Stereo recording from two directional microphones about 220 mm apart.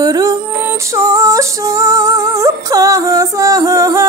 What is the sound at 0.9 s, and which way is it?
Female singing, 15° right (ahead or behind).